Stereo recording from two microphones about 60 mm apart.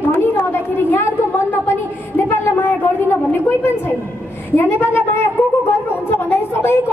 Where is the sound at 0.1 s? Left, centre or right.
Left.